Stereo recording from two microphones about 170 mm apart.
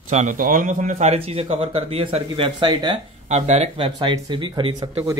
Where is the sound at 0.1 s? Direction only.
50° right (ahead or behind); by 3.0 s 30° right (ahead or behind).